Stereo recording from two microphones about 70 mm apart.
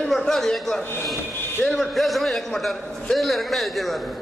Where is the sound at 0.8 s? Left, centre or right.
Left.